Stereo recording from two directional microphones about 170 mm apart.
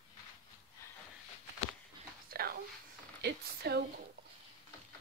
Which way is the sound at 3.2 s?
75° right (ahead or behind).